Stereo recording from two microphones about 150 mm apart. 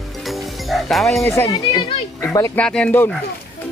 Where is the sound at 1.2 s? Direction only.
20° left (ahead or behind).